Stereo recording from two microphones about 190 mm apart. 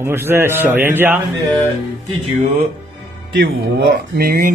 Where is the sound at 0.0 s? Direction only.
10° right (ahead or behind).